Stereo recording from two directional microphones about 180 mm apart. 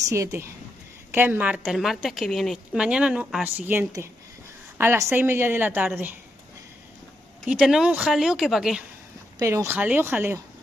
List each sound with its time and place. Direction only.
0.1 s a woman's voice: 15° right (ahead or behind)
7.4 s a woman's voice: 5° right (ahead or behind)
9.4 s a woman's voice: 15° right (ahead or behind)